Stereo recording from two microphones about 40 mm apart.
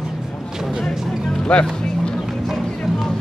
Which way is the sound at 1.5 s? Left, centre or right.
Left.